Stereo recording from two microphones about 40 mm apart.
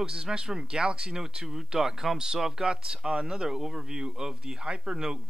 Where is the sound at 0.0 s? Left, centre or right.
Centre.